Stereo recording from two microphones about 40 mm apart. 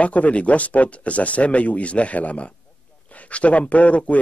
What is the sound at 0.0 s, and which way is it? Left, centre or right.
Speech, left.